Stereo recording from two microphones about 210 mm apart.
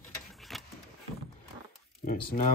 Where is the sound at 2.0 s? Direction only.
45° left (ahead or behind).